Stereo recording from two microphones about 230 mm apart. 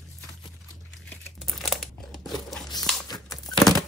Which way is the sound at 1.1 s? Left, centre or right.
Centre.